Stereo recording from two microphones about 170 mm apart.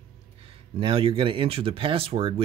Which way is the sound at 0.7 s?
30° right (ahead or behind).